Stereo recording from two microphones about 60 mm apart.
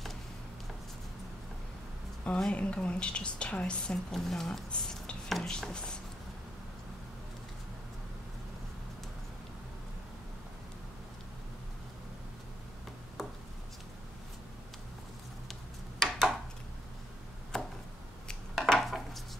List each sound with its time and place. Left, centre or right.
2.2 s a woman's voice: centre
4.1 s speech: centre
13.2 s a sound: centre
16.0 s a sound: centre
17.5 s chop: centre
18.3 s dishes: centre